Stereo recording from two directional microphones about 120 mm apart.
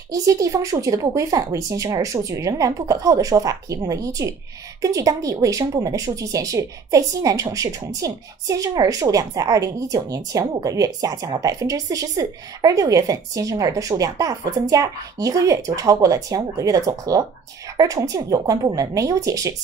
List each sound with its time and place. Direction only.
0.1 s speech: 25° right (ahead or behind)